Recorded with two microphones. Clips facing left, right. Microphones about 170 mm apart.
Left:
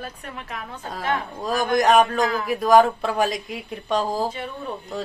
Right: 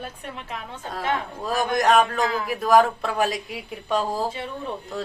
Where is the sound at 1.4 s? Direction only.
Centre (ahead or behind).